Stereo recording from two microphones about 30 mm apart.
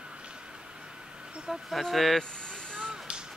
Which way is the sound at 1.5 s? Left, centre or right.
Centre.